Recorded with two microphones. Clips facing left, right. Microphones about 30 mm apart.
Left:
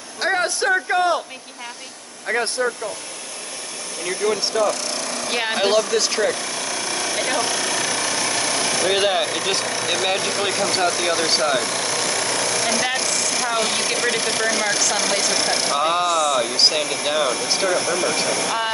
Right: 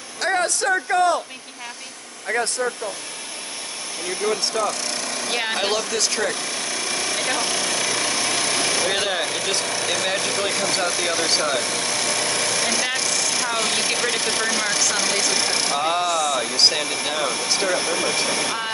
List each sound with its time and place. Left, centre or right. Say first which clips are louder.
0.2 s a sound: left 1 dB; centre
2.3 s speech: left 1 dB; centre
4.3 s speech: left 3 dB; centre
4.6 s speech: left 2 dB; centre
6.3 s vehicle: left 1 dB; centre
7.9 s jackhammer: even; centre
8.8 s speech: left 3 dB; centre
11.6 s speech: left 1 dB; centre
17.5 s speech: left 1 dB; centre
17.7 s speech: left 1 dB; centre